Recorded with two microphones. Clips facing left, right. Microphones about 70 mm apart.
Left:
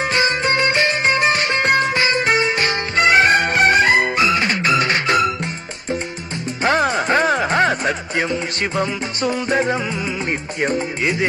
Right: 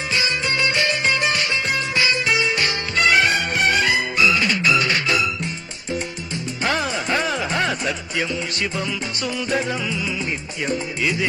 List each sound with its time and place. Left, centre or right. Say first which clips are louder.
0.1 s music: left 2 dB; left
1.6 s music: left 7 dB; left
2.0 s music: left 3 dB; left